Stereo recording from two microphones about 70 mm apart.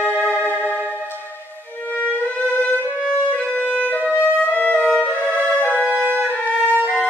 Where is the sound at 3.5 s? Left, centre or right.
Centre.